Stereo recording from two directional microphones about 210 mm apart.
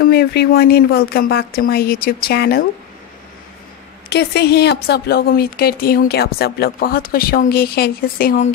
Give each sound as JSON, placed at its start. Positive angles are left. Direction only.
{"t": 0.0, "sound": "a woman's voice", "side_deg": 45}
{"t": 4.1, "sound": "a woman's voice", "side_deg": 50}